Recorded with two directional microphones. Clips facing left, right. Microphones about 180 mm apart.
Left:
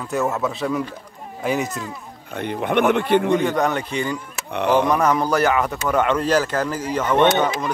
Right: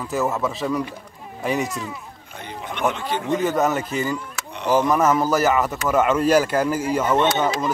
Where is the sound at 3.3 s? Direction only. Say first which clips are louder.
Even; 5° right (ahead or behind).